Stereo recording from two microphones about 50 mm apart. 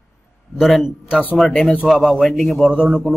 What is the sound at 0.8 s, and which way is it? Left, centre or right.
Speech, centre.